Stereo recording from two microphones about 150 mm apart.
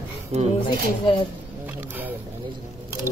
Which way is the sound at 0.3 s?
50° right (ahead or behind).